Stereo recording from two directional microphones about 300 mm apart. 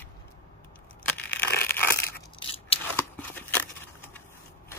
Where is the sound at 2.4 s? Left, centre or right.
Centre.